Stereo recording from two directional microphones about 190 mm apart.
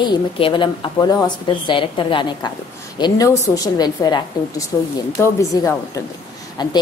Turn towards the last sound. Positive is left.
turn(degrees=20)  # may be behind; listen again after turning